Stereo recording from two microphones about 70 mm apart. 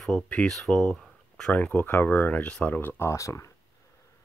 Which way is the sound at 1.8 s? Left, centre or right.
Left.